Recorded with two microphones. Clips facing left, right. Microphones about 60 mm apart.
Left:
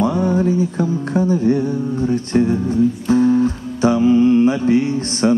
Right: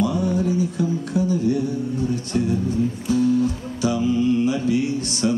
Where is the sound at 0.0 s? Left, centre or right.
Left.